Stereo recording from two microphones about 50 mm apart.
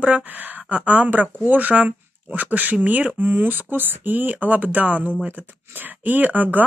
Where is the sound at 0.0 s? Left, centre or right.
Right.